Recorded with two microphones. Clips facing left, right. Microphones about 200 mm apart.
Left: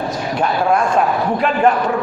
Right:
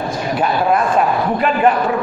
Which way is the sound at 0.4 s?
Centre (ahead or behind).